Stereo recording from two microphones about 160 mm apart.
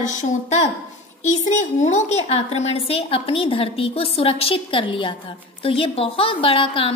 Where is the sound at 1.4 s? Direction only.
50° left (ahead or behind).